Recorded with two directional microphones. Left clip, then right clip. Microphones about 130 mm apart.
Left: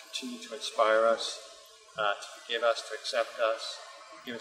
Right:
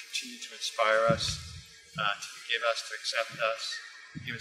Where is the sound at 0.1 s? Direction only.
5° right (ahead or behind).